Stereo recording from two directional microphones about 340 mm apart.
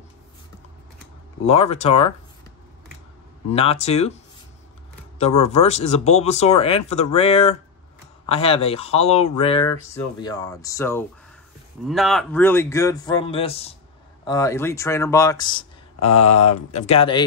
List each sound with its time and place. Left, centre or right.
1.4 s speech: centre
3.5 s speech: centre
5.2 s speech: centre